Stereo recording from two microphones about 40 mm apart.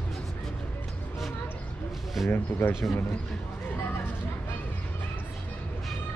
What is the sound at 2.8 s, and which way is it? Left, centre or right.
Speech, left.